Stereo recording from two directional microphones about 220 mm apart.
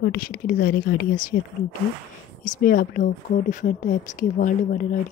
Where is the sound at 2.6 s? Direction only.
40° left (ahead or behind).